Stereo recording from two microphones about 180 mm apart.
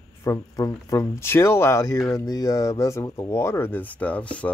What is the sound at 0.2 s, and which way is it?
Speech, 20° left (ahead or behind).